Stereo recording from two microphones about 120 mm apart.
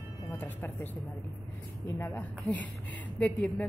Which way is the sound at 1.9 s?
15° left (ahead or behind).